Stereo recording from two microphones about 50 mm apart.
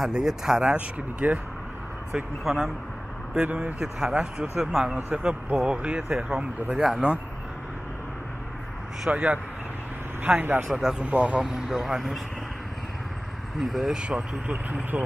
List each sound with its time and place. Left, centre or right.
0.1 s speech: centre
0.7 s speech: right
2.4 s speech: centre
3.3 s speech: right
3.8 s speech: centre
6.8 s speech: centre
9.1 s speech: right
10.2 s speech: right
10.7 s speech: centre
11.1 s speech: right
11.4 s speech: centre
13.6 s speech: centre
13.9 s speech: centre
14.5 s speech: right